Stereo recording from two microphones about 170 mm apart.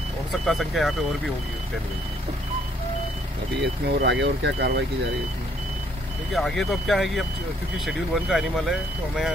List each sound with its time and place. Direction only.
0.5 s speech: centre (ahead or behind)
3.6 s speech: 90° right
6.3 s speech: centre (ahead or behind)